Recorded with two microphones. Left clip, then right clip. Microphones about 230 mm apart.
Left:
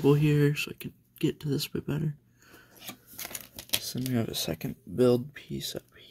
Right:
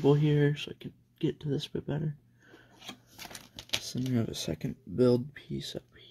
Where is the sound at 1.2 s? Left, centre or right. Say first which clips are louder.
Left 3 dB; left.